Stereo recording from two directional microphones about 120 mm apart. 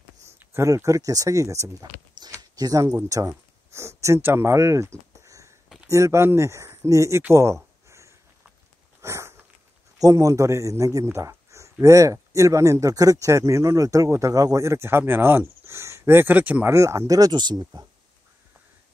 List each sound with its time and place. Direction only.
0.5 s a man's voice: 25° right (ahead or behind)
9.0 s dog: 25° right (ahead or behind)
9.9 s a man's voice: 30° right (ahead or behind); by 16.7 s 15° right (ahead or behind)
16.7 s speech: 25° right (ahead or behind)